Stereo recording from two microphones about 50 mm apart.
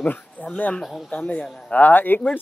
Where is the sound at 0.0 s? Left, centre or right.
Left.